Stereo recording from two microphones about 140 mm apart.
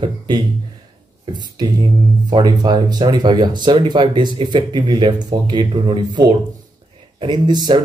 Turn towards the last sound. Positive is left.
turn(degrees=-30)  # may be behind; listen again after turning